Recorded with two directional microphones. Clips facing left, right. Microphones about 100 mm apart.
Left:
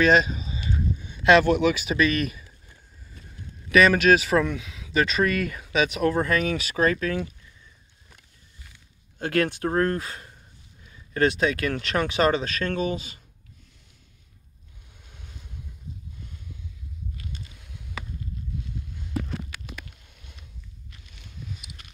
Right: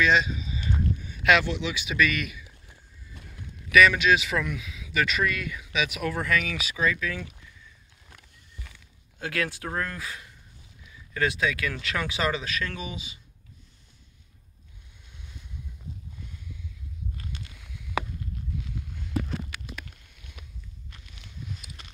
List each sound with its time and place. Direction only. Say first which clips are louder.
0.0 s speech: left 4 dB; 50° left (ahead or behind)
1.0 s a sound: left 5 dB; 25° left (ahead or behind)
1.4 s speech: left 10 dB; 50° left (ahead or behind)
3.7 s speech: left 2 dB; 40° left (ahead or behind)
5.3 s speech: left 6 dB; 45° left (ahead or behind)
9.2 s speech: left 7 dB; 45° left (ahead or behind)
10.9 s a sound: left 5 dB; 30° left (ahead or behind)
11.5 s speech: left 5 dB; 45° left (ahead or behind)
11.9 s speech: left 7 dB; 35° left (ahead or behind)